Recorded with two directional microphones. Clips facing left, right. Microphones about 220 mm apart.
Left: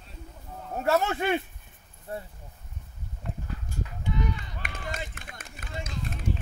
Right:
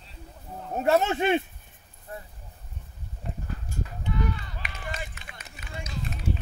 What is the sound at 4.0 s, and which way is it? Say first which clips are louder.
Run: right 1 dB; 20° left (ahead or behind).